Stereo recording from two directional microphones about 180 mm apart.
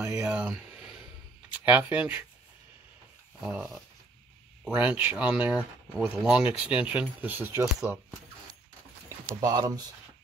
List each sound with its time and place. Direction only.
0.0 s speech: 5° right (ahead or behind)
3.4 s speech: 5° right (ahead or behind)
9.4 s speech: 20° right (ahead or behind)